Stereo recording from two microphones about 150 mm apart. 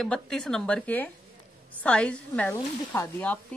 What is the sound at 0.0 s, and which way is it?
Speech, 5° left (ahead or behind).